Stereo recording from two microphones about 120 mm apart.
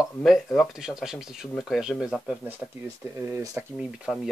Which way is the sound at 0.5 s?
5° right (ahead or behind).